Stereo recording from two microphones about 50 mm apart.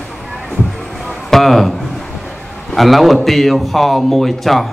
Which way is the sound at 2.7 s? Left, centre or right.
Centre.